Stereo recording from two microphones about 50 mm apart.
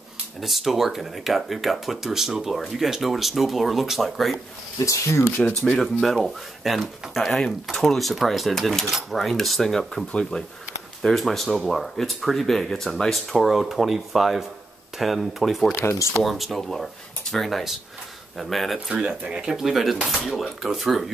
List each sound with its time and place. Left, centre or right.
0.4 s speech: centre
4.7 s speech: left
5.8 s speech: centre
15.8 s speech: left
16.2 s speech: centre
18.9 s speech: centre
19.5 s speech: centre